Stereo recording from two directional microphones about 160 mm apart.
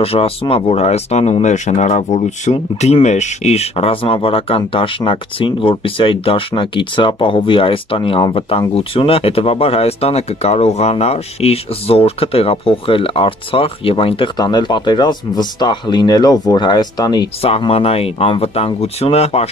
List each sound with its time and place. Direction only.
0.0 s speech: 40° left (ahead or behind)
17.4 s speech: 35° left (ahead or behind)